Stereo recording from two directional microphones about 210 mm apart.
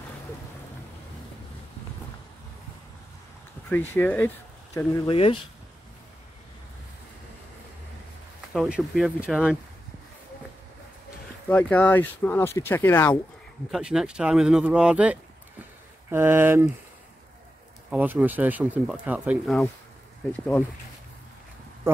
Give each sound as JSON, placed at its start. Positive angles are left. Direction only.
{"t": 3.6, "sound": "speech", "side_deg": 10}
{"t": 5.0, "sound": "speech", "side_deg": 25}
{"t": 8.5, "sound": "speech", "side_deg": 0}
{"t": 11.4, "sound": "speech", "side_deg": 10}
{"t": 13.7, "sound": "speech", "side_deg": -5}
{"t": 17.9, "sound": "speech", "side_deg": -10}